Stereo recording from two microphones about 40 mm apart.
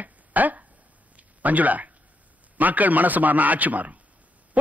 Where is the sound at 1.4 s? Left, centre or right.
Right.